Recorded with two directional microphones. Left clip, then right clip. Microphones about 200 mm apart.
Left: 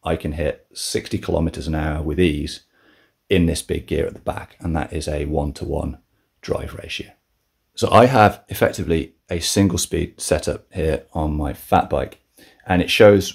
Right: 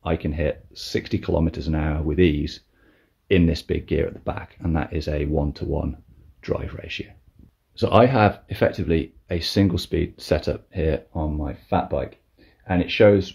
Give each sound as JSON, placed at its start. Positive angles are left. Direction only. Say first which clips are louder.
{"t": 0.0, "sound": "speech", "louder": "left 2 dB", "side_deg": 5}
{"t": 11.1, "sound": "speech", "louder": "left 5 dB", "side_deg": 25}